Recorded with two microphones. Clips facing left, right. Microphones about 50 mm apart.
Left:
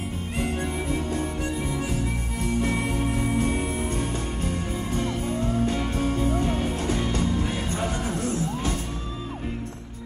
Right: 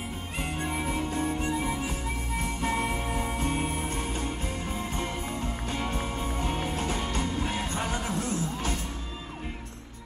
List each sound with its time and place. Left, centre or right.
0.8 s music: right
2.6 s music: right
5.7 s music: centre